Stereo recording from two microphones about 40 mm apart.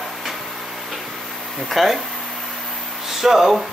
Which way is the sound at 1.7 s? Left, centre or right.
Centre.